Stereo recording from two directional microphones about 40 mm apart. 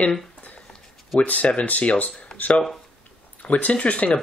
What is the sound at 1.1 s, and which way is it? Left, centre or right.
Speech, left.